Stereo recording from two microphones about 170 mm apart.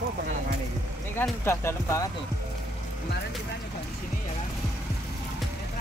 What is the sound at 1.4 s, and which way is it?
Speech, 15° left (ahead or behind).